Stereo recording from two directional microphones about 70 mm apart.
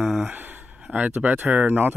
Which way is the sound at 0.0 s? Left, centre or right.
Centre.